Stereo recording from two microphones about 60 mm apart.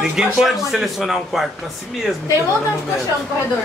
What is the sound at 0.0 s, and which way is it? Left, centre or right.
Speech, centre.